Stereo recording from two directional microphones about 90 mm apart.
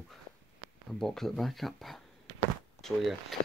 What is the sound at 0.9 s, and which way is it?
Speech, 5° left (ahead or behind).